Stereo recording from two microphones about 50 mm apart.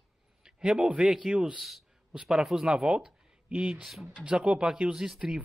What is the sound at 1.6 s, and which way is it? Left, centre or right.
Speech, centre.